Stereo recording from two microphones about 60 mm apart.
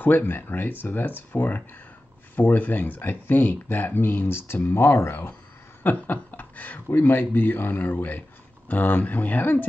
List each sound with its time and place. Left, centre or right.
0.0 s speech: left